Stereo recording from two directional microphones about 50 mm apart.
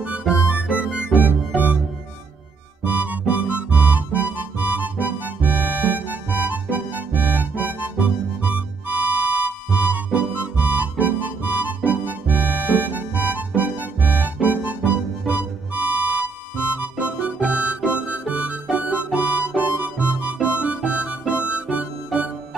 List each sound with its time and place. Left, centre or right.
0.5 s music: right
2.8 s music: right
16.9 s music: right
19.1 s harmonica: right
20.6 s music: right